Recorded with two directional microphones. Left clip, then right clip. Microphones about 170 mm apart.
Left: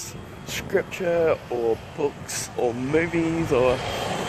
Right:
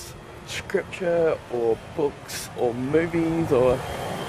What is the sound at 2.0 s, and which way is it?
Speech, 15° right (ahead or behind).